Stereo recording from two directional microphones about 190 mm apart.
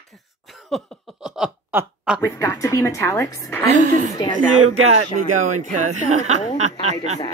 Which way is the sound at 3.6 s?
40° right (ahead or behind).